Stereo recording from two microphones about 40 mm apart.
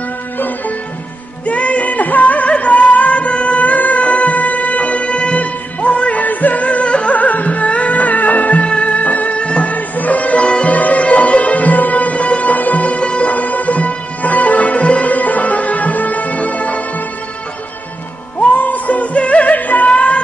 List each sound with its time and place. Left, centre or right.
1.4 s music: left
7.2 s music: left
13.3 s music: left
18.5 s music: left